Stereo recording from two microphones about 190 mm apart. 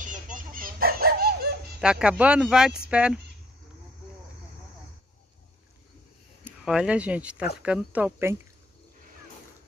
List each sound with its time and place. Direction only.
0.0 s dog: 45° right (ahead or behind)
1.8 s speech: 5° right (ahead or behind)
6.4 s speech: 5° right (ahead or behind)